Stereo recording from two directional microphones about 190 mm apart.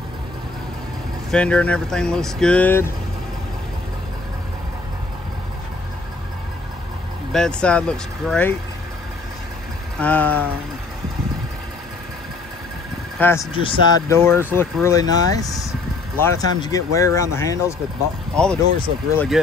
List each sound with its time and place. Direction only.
1.3 s speech: 5° left (ahead or behind)
7.3 s speech: 5° left (ahead or behind)
9.9 s speech: 10° left (ahead or behind)
13.2 s speech: 15° left (ahead or behind)
13.5 s speech: 25° left (ahead or behind)
14.0 s speech: 10° left (ahead or behind)
18.3 s speech: 5° left (ahead or behind)